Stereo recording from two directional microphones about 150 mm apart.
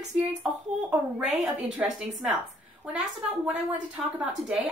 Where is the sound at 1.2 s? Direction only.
5° right (ahead or behind).